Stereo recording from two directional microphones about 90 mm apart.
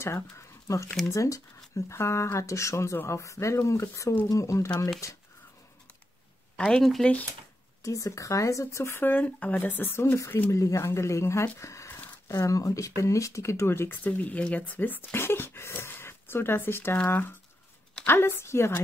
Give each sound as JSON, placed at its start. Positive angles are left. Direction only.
{"t": 1.1, "sound": "speech", "side_deg": 35}
{"t": 6.5, "sound": "speech", "side_deg": 10}
{"t": 7.8, "sound": "speech", "side_deg": 35}